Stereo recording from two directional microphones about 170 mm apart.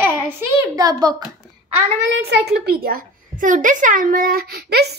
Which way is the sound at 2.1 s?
75° right (ahead or behind).